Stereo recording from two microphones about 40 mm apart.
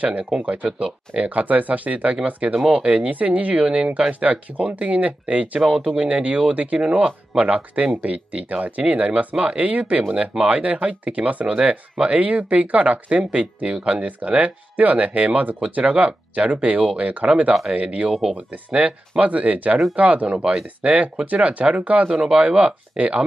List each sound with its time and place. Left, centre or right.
0.0 s speech: right
4.1 s speech: right
5.7 s speech: right
13.2 s speech: right
20.3 s speech: centre
20.6 s speech: right
22.2 s speech: right